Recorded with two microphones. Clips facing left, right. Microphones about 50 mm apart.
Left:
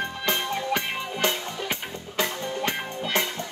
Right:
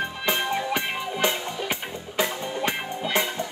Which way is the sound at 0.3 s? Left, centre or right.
Centre.